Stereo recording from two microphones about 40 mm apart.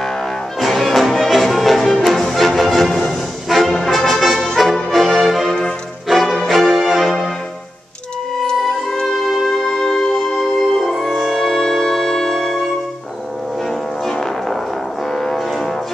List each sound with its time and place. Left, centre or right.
0.6 s music: centre
3.7 s brass instrument: centre
4.9 s music: centre
9.3 s music: centre
9.7 s music: centre
13.7 s music: centre